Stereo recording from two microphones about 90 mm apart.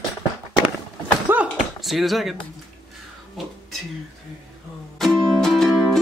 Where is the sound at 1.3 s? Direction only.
20° right (ahead or behind).